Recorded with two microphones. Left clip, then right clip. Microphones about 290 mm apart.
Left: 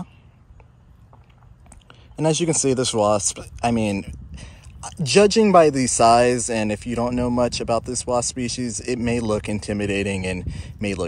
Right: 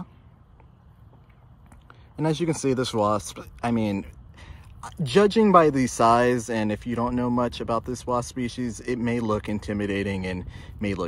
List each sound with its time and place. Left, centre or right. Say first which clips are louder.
1.9 s speech: left 5 dB; centre